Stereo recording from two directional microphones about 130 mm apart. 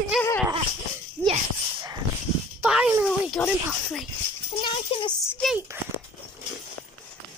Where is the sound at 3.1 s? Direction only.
5° left (ahead or behind).